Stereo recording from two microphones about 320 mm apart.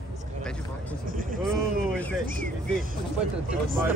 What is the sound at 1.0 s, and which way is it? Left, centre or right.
Vehicle, right.